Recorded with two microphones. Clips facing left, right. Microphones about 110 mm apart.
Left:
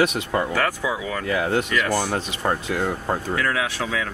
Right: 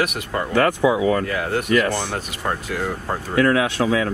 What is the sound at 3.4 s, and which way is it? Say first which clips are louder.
Speech: right 7 dB; 30° right (ahead or behind).